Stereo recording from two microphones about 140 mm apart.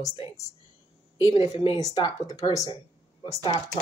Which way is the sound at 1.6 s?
30° left (ahead or behind).